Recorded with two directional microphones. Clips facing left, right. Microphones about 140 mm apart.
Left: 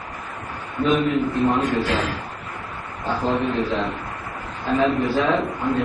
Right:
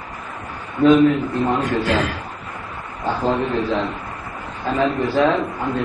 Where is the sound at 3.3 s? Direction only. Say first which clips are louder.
Right 2 dB; centre (ahead or behind).